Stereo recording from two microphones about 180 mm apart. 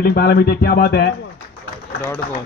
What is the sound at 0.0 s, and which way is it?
A man's voice, 60° left (ahead or behind).